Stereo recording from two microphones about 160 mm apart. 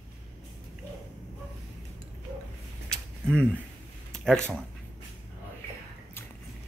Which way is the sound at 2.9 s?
Centre (ahead or behind).